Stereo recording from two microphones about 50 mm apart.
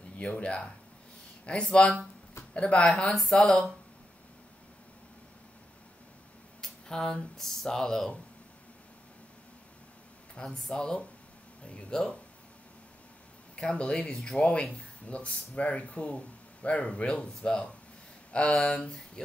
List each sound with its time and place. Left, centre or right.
0.2 s speech: left
3.2 s speech: centre
6.6 s speech: centre
10.3 s speech: centre
13.6 s speech: left
18.5 s speech: centre
18.8 s a sound: centre